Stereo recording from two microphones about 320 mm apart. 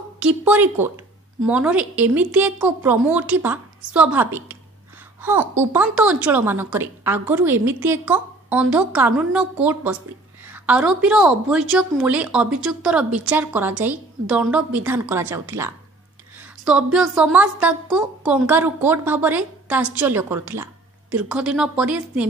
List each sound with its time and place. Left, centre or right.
0.2 s a woman's voice: centre